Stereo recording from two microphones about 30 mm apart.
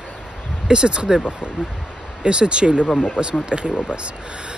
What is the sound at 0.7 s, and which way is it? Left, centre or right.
Speech, right.